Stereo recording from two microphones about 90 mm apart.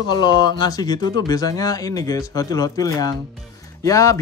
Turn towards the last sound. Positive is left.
turn(degrees=35)  # may be behind; listen again after turning